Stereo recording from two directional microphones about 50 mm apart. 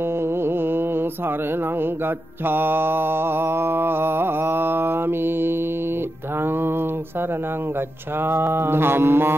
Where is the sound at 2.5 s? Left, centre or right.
Right.